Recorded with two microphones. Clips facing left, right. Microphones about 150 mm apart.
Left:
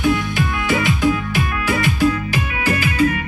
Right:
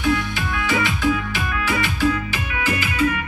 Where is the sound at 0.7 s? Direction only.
45° left (ahead or behind).